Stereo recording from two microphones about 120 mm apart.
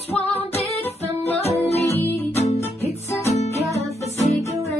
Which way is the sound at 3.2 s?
65° left (ahead or behind).